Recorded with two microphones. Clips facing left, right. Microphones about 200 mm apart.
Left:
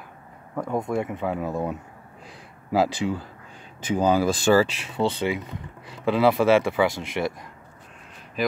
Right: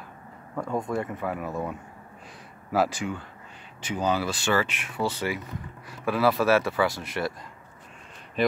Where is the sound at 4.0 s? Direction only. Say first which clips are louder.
Left 6 dB; 45° left (ahead or behind).